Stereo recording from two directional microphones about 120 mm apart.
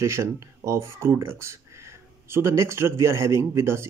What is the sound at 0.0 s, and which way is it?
Speech, 25° right (ahead or behind).